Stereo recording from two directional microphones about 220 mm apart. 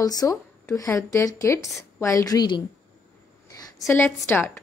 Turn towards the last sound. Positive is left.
turn(degrees=10)  # may be behind; listen again after turning